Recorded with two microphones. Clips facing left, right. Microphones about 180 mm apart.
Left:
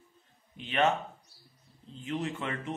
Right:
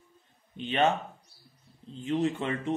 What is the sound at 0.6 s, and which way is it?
Speech, 30° right (ahead or behind).